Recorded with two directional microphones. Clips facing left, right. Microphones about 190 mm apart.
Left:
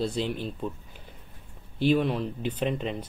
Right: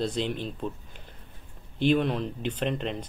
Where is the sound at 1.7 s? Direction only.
5° left (ahead or behind).